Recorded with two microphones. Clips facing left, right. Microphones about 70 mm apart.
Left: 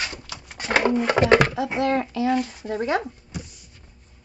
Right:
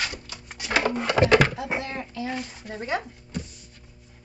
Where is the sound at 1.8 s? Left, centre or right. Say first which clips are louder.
Left 10 dB; left.